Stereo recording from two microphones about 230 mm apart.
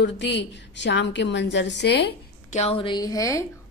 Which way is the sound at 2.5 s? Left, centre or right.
Left.